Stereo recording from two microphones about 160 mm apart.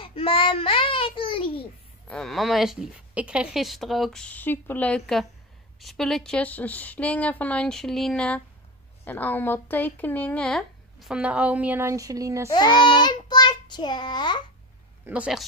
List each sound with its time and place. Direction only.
0.0 s a child's voice: 35° left (ahead or behind)
2.0 s speech: centre (ahead or behind); by 12.4 s 20° right (ahead or behind)
12.4 s child singing: 25° left (ahead or behind)
15.0 s speech: 5° right (ahead or behind)